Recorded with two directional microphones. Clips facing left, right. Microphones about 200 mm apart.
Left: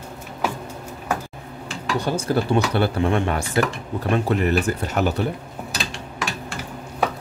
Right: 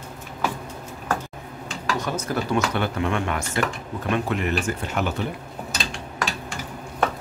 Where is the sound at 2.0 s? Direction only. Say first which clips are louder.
Left 6 dB; 30° left (ahead or behind).